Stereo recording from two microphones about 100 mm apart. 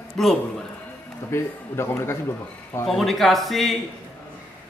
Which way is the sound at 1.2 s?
25° left (ahead or behind).